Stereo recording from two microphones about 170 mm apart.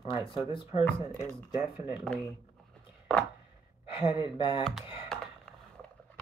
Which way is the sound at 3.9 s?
30° left (ahead or behind).